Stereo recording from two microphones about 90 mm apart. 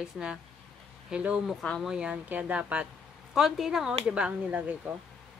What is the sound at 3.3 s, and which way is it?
A woman's voice, 5° right (ahead or behind).